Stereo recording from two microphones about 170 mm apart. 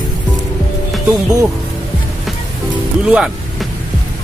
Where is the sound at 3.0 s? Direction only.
5° right (ahead or behind).